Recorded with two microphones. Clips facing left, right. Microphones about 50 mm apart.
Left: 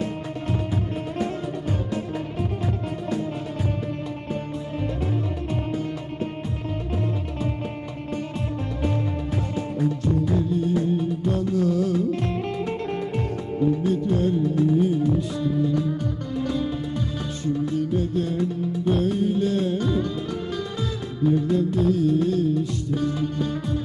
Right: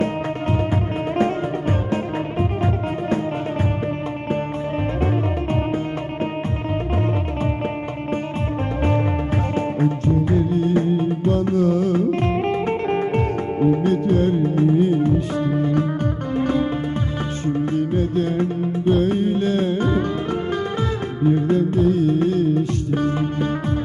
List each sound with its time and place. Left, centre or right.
9.8 s music: right
21.2 s music: right